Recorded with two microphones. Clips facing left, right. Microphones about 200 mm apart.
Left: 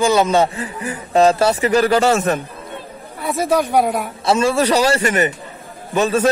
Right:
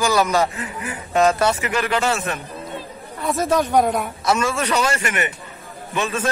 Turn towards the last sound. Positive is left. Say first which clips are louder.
# left 7 dB
turn(degrees=35)  # may be behind; listen again after turning